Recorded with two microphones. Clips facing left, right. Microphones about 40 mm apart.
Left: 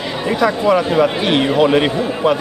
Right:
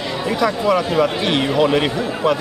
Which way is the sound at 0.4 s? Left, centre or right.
Centre.